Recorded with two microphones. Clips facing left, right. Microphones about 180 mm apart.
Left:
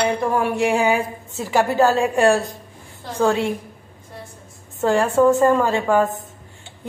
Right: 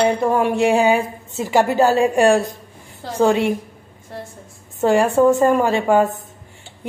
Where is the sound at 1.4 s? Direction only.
15° right (ahead or behind).